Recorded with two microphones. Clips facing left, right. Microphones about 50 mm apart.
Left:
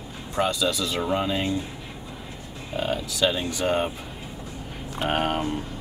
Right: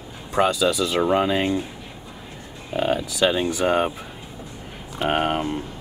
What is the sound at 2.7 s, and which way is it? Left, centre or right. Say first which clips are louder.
Speech: right 5 dB; centre.